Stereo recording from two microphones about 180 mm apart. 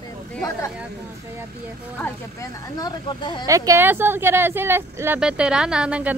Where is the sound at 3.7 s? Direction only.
10° right (ahead or behind).